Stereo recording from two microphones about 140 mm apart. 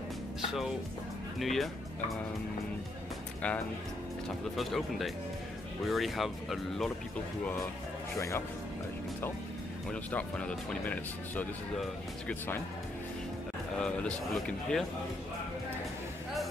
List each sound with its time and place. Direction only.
1.4 s speech: centre (ahead or behind)
3.4 s speech: 10° left (ahead or behind)
8.2 s speech: 20° left (ahead or behind)
9.8 s speech: 10° left (ahead or behind)
13.7 s speech: 5° left (ahead or behind)